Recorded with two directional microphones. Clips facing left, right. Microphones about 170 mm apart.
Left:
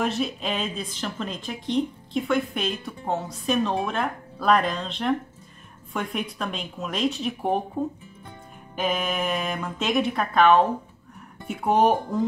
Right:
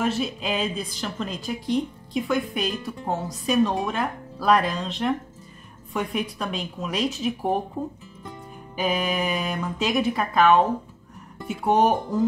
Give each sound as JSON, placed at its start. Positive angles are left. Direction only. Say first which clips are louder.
{"t": 0.0, "sound": "a woman's voice", "louder": "right 1 dB", "side_deg": 0}
{"t": 8.7, "sound": "a woman's voice", "louder": "right 1 dB", "side_deg": -5}